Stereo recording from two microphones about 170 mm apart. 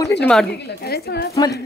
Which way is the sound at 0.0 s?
15° left (ahead or behind).